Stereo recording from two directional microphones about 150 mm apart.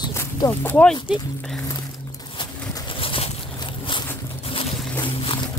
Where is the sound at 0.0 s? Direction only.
25° left (ahead or behind).